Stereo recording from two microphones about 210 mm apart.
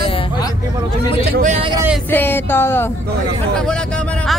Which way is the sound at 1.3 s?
40° right (ahead or behind).